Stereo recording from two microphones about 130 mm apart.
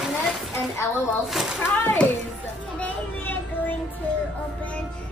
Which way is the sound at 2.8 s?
15° left (ahead or behind).